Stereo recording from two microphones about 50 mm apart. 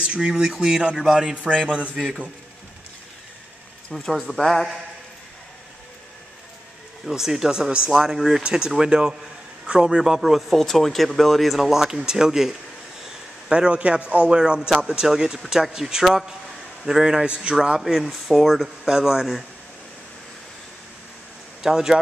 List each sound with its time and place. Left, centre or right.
0.0 s speech: right
3.9 s speech: centre
7.1 s speech: centre
11.7 s speech: centre
13.5 s speech: right
17.7 s speech: centre
21.6 s speech: centre